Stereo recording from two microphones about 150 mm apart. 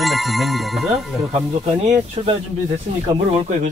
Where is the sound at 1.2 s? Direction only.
40° right (ahead or behind).